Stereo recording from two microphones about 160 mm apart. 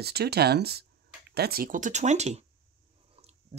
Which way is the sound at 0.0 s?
85° right.